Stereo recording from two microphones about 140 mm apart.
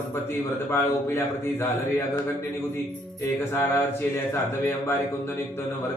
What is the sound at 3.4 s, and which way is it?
Speech, 20° left (ahead or behind).